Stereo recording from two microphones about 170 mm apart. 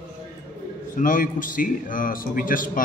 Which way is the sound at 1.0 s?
55° left (ahead or behind).